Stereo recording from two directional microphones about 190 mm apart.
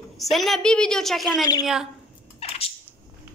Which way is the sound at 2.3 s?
30° left (ahead or behind).